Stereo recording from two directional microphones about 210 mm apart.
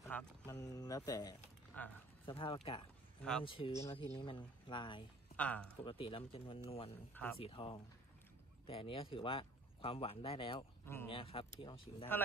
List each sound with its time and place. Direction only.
0.0 s speech: 10° left (ahead or behind)
3.2 s speech: 5° left (ahead or behind)
3.4 s speech: 25° left (ahead or behind)
5.3 s speech: 5° left (ahead or behind)
5.9 s speech: 25° left (ahead or behind)